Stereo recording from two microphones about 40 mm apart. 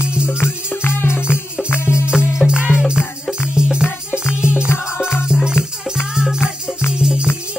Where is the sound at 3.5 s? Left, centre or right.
Right.